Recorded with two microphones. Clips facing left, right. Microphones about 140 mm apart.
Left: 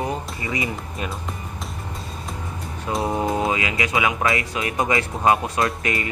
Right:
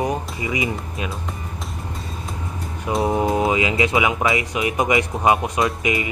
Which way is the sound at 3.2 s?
20° right (ahead or behind).